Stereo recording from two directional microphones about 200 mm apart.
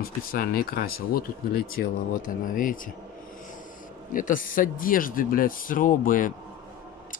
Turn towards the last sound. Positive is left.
turn(degrees=40)  # may be behind; listen again after turning